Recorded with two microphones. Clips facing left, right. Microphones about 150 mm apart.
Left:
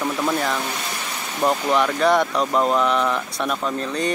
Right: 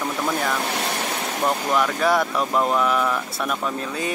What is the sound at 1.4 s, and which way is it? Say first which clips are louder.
Speech: left 3 dB; centre (ahead or behind).